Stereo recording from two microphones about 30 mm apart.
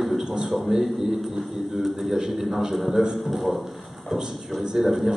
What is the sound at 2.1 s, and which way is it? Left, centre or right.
A man's voice, centre.